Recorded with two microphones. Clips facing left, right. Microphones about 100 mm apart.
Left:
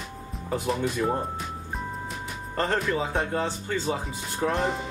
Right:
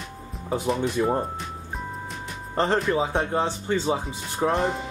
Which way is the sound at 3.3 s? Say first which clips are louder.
Right 3 dB; 25° right (ahead or behind).